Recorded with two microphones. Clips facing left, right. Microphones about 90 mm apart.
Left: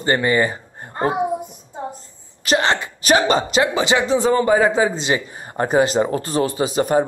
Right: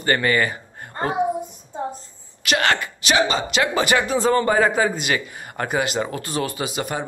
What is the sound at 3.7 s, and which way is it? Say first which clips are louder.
A man's voice: left 2 dB; 20° left (ahead or behind).